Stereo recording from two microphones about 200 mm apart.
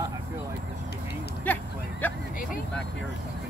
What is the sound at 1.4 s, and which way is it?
Vehicle, 10° left (ahead or behind).